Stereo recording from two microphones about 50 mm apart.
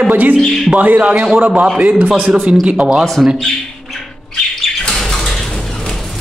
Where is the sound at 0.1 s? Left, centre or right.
Right.